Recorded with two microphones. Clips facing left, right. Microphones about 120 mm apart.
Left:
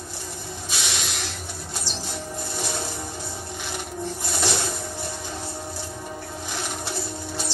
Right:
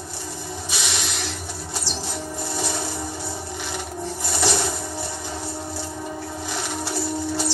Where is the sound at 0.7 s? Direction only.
15° left (ahead or behind).